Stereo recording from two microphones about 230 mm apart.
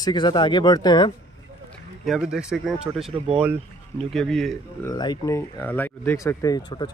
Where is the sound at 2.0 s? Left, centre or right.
Centre.